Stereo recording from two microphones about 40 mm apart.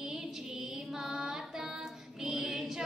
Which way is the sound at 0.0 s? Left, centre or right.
Centre.